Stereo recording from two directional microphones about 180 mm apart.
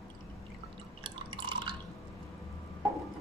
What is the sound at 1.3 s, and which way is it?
Drip, 25° right (ahead or behind).